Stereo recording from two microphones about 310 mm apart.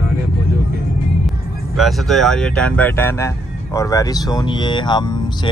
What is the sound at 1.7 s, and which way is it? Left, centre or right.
Speech, centre.